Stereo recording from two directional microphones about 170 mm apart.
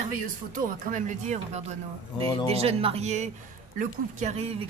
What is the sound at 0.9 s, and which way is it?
Speech, 45° right (ahead or behind).